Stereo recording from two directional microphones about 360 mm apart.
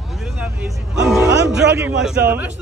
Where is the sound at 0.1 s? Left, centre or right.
Centre.